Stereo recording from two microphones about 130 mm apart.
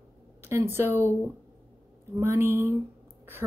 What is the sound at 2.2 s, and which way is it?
Speech, 15° right (ahead or behind).